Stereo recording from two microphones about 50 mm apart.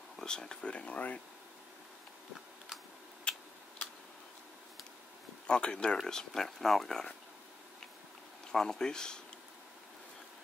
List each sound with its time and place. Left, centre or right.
0.2 s speech: centre
3.3 s a sound: centre
5.5 s speech: centre
8.5 s speech: centre